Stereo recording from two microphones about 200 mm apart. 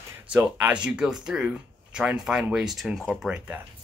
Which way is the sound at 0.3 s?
5° right (ahead or behind).